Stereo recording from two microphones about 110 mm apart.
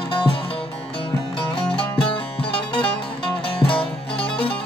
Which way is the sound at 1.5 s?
55° left (ahead or behind).